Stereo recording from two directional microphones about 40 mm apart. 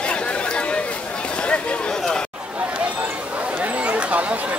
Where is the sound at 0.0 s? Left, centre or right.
Left.